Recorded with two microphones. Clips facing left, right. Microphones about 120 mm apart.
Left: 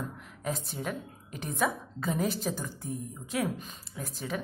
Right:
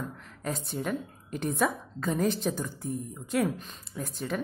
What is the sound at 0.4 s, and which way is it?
A woman's voice, centre (ahead or behind).